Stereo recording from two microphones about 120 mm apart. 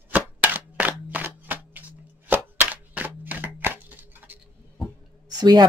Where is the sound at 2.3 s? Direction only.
15° right (ahead or behind).